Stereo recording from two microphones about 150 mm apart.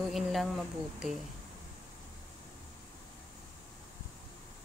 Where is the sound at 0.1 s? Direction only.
Centre (ahead or behind).